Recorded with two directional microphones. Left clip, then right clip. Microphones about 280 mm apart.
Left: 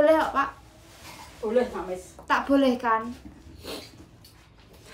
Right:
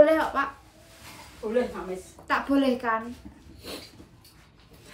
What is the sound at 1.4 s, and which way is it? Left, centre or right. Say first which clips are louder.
Speech: left 3 dB; left.